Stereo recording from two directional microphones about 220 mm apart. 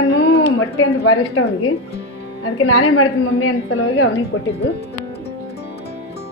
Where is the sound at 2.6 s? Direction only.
70° left (ahead or behind).